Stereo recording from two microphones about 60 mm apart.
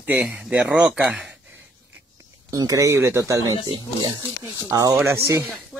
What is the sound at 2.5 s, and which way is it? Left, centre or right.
Speech, right.